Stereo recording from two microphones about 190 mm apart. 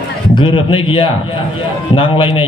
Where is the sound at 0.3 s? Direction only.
25° left (ahead or behind).